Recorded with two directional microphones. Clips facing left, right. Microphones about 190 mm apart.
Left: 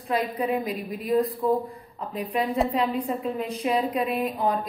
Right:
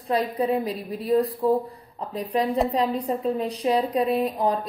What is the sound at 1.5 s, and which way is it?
A woman's voice, 35° right (ahead or behind).